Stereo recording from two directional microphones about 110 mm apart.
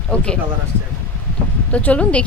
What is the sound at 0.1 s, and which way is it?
Speech, 10° left (ahead or behind).